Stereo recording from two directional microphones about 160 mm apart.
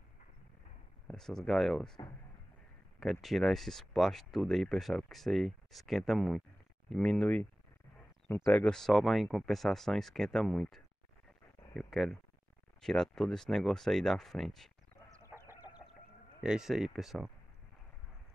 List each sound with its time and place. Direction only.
1.0 s speech: 5° left (ahead or behind)
3.0 s speech: centre (ahead or behind)
8.5 s speech: 5° left (ahead or behind)
15.2 s chicken: 15° right (ahead or behind)
16.4 s speech: 5° right (ahead or behind)